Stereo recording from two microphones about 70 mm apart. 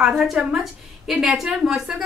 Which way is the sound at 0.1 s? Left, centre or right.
Centre.